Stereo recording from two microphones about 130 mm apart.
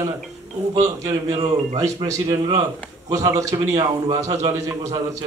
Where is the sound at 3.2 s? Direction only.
25° right (ahead or behind).